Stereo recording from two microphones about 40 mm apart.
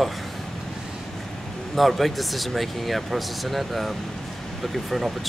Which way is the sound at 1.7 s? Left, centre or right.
Centre.